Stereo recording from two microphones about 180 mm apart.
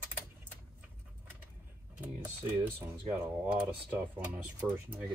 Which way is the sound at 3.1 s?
10° right (ahead or behind).